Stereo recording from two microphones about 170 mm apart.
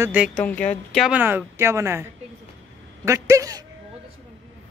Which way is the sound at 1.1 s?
10° right (ahead or behind).